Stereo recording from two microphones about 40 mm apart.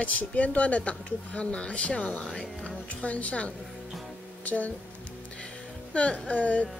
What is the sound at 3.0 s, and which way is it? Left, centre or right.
Speech, left.